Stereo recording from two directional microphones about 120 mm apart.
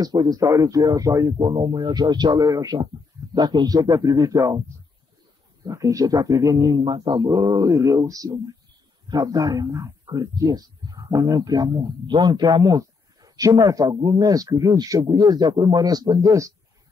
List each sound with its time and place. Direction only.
0.0 s speech: 35° right (ahead or behind)
1.4 s a man's voice: 40° right (ahead or behind)
5.7 s speech: 25° right (ahead or behind)
6.8 s a man's voice: 40° right (ahead or behind)